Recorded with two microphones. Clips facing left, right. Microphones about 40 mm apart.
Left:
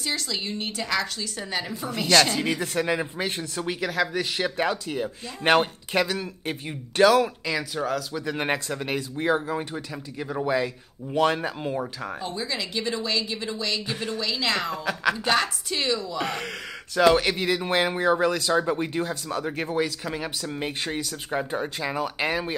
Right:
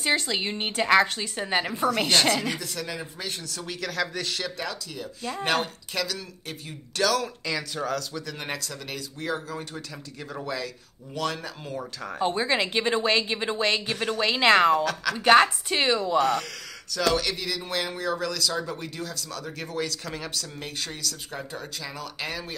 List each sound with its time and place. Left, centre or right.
0.0 s a woman's voice: right
2.6 s speech: left; by 4.5 s centre
4.6 s speech: left
7.4 s speech: centre
8.3 s speech: left
12.2 s a woman's voice: right
16.2 s speech: left